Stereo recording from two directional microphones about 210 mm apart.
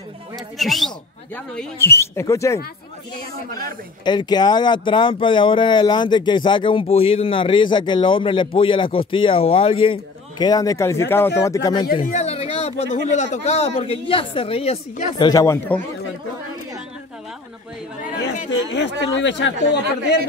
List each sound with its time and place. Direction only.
0.6 s speech: centre (ahead or behind)
4.0 s speech: 20° left (ahead or behind)
12.0 s speech: 30° left (ahead or behind)
15.1 s speech: 20° left (ahead or behind)
18.5 s speech: 60° left (ahead or behind)